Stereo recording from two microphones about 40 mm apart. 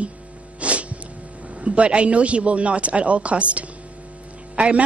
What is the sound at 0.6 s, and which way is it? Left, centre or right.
Sneeze, right.